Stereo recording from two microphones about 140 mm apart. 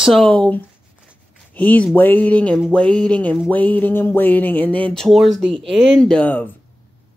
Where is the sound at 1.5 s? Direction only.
10° left (ahead or behind).